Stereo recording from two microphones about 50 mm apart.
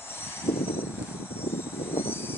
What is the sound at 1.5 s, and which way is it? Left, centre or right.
Vehicle, left.